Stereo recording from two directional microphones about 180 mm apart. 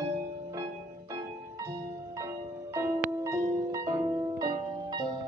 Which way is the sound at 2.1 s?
15° right (ahead or behind).